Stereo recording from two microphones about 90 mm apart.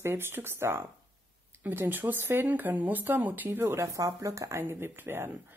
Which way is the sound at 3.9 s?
35° right (ahead or behind).